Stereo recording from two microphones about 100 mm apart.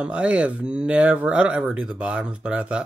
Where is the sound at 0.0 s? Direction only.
10° right (ahead or behind).